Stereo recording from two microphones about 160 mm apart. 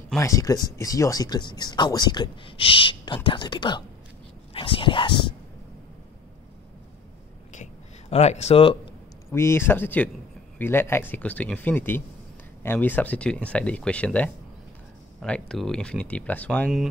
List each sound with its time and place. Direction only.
0.2 s speech: 20° left (ahead or behind)
7.5 s a sound: 45° left (ahead or behind)
9.3 s speech: 15° left (ahead or behind)